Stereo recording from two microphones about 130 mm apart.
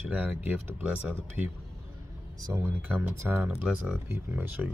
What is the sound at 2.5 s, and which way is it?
Speech, 15° right (ahead or behind).